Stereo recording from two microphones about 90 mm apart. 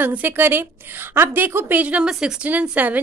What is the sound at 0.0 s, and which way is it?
A woman's voice, 20° right (ahead or behind).